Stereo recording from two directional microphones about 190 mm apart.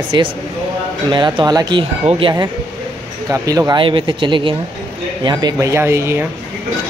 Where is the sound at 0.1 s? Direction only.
25° right (ahead or behind).